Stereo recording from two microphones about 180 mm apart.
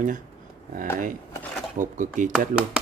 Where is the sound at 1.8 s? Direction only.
45° right (ahead or behind).